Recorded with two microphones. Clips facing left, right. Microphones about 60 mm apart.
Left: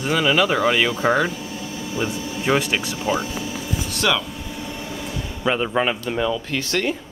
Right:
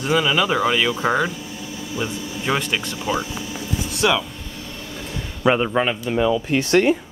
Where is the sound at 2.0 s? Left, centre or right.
Centre.